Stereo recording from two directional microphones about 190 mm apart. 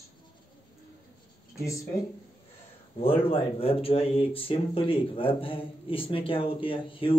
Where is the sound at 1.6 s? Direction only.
15° left (ahead or behind).